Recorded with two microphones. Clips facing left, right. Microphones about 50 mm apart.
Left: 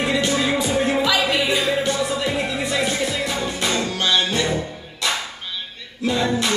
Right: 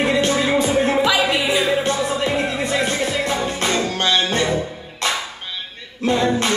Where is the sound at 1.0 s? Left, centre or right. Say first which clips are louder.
Right 2 dB; centre.